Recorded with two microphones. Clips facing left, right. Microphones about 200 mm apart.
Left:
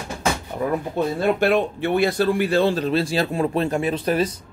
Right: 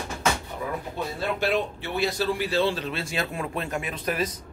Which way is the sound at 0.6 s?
55° left (ahead or behind).